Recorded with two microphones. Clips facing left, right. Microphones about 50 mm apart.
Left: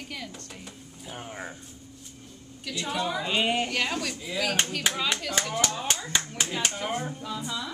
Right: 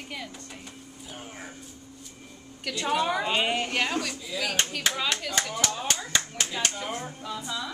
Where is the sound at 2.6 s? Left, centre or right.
Right.